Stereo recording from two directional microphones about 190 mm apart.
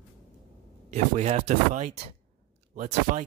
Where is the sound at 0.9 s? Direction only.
35° right (ahead or behind).